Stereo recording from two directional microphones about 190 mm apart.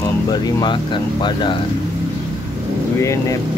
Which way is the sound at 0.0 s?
20° left (ahead or behind).